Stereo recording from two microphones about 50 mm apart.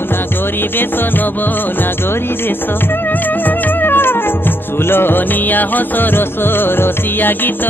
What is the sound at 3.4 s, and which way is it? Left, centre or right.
Music, left.